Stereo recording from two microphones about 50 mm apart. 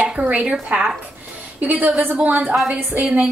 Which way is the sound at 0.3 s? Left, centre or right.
Right.